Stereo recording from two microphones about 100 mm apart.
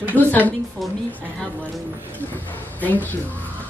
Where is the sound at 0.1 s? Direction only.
15° left (ahead or behind).